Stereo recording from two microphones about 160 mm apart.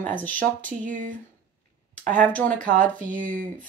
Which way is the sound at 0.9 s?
55° right (ahead or behind).